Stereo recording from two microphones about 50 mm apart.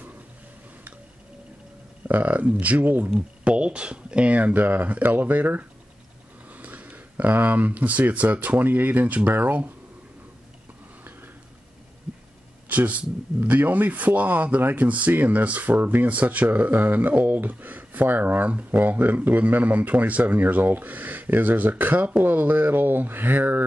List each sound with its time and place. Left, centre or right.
2.0 s speech: right
3.1 s speech: right
12.6 s speech: right